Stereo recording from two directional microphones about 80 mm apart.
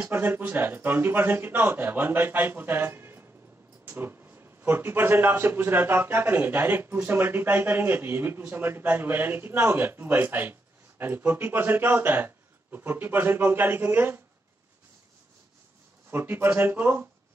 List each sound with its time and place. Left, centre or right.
0.1 s speech: right
16.1 s speech: right